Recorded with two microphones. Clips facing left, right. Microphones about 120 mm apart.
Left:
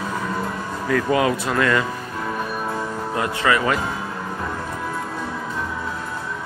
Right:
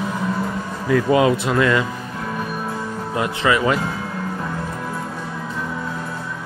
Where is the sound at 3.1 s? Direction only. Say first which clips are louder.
Right 2 dB; 20° right (ahead or behind).